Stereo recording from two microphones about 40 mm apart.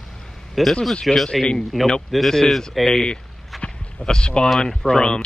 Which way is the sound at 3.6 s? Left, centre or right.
Left.